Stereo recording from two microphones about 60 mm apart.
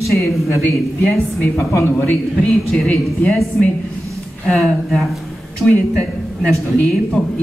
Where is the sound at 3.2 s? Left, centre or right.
Left.